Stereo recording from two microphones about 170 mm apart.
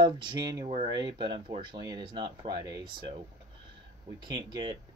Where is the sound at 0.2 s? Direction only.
25° right (ahead or behind).